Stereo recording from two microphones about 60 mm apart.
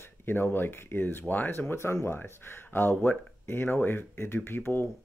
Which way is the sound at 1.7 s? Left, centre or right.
Left.